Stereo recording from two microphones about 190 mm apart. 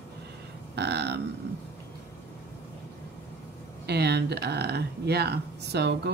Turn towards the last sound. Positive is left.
turn(degrees=-60)  # may be behind; listen again after turning